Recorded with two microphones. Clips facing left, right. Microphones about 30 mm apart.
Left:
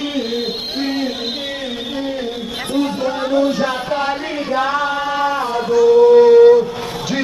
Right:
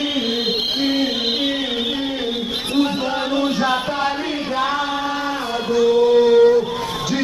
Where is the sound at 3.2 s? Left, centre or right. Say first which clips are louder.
Left 6 dB; right.